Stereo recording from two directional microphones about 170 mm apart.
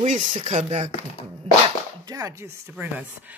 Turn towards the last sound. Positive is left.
turn(degrees=-10)  # may be behind; listen again after turning